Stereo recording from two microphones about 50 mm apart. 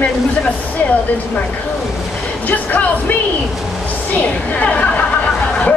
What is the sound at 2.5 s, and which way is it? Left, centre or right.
A woman's voice, left.